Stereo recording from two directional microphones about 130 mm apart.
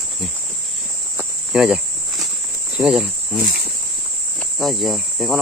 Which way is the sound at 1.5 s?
5° right (ahead or behind).